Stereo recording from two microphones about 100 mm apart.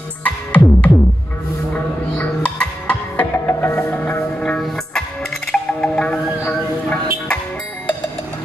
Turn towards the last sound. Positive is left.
turn(degrees=15)  # may be behind; listen again after turning